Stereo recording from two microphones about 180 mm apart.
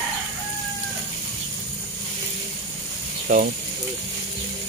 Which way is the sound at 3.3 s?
45° right (ahead or behind).